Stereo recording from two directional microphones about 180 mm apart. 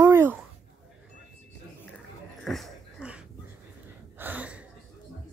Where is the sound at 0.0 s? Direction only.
10° right (ahead or behind).